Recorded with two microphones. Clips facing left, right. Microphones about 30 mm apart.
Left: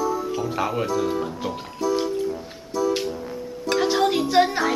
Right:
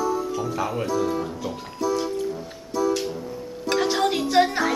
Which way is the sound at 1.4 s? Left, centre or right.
Left.